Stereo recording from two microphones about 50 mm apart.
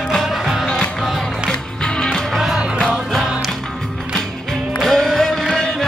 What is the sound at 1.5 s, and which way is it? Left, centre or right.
Music, centre.